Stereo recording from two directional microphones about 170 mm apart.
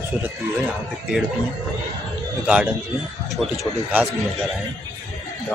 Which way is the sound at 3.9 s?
5° right (ahead or behind).